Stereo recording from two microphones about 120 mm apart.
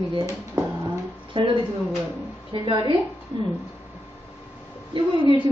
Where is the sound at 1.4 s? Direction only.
45° right (ahead or behind).